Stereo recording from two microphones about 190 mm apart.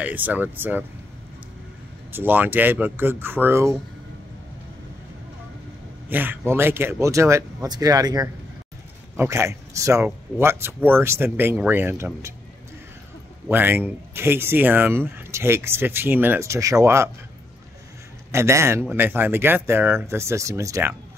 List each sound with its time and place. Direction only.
0.0 s speech: 10° right (ahead or behind)
2.1 s speech: 10° right (ahead or behind)
6.0 s speech: 10° right (ahead or behind)
13.5 s speech: 10° right (ahead or behind)
18.3 s speech: 15° right (ahead or behind)